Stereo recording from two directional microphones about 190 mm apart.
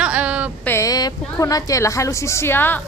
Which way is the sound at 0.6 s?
15° left (ahead or behind).